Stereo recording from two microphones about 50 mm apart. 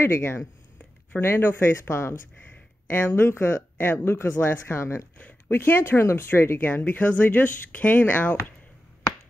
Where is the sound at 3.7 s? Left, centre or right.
Left.